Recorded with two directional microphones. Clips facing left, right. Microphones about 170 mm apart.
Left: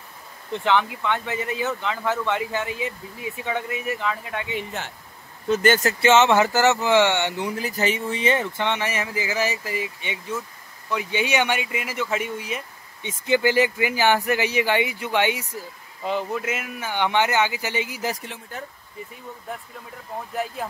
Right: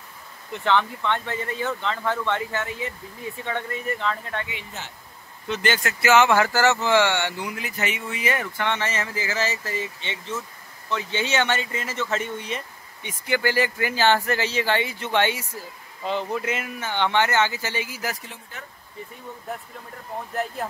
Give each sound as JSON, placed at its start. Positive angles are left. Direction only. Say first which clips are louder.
{"t": 0.7, "sound": "speech", "louder": "even", "side_deg": 10}
{"t": 4.7, "sound": "speech", "louder": "left 5 dB", "side_deg": 60}
{"t": 5.5, "sound": "speech", "louder": "left 6 dB", "side_deg": 45}
{"t": 6.0, "sound": "speech", "louder": "left 1 dB", "side_deg": 25}
{"t": 7.5, "sound": "speech", "louder": "left 5 dB", "side_deg": 35}
{"t": 13.2, "sound": "speech", "louder": "left 4 dB", "side_deg": 20}